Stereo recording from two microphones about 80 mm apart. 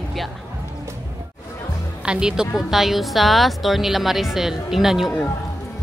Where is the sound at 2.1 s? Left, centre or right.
Centre.